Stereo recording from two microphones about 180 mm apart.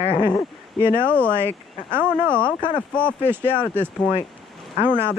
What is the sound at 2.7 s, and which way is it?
Speech, 5° left (ahead or behind).